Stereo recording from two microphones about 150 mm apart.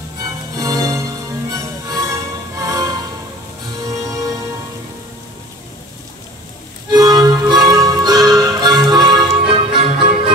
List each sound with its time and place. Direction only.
0.6 s music: 20° right (ahead or behind)
4.0 s music: 20° right (ahead or behind)
6.9 s music: 25° right (ahead or behind)